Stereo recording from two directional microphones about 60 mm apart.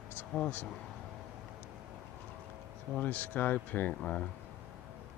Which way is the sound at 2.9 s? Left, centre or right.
Left.